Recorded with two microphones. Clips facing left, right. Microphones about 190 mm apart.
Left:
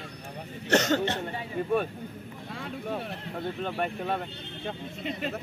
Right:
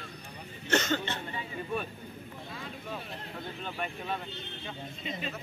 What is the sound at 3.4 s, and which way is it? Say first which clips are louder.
Speech: left 8 dB; 65° left (ahead or behind).